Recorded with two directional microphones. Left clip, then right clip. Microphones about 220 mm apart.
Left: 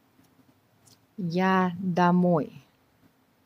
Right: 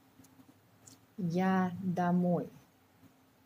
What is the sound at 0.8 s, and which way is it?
Speech, 25° left (ahead or behind).